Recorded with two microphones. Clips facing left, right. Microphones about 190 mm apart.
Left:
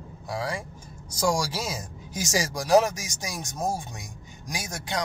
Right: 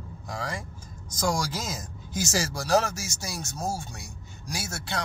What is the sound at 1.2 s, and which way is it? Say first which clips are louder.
Speech: left 2 dB; 10° left (ahead or behind).